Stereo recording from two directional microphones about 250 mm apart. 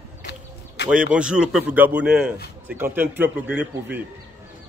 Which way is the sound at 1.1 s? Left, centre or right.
Centre.